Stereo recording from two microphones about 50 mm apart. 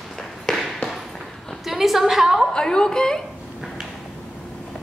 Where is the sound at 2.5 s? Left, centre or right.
Centre.